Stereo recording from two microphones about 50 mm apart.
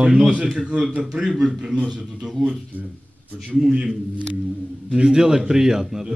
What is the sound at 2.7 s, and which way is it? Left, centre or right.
Speech, right.